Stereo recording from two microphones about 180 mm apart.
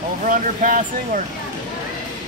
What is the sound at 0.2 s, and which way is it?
Speech, 50° right (ahead or behind).